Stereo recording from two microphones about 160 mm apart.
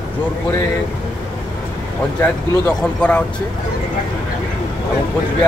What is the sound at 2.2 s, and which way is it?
Speech, 5° left (ahead or behind).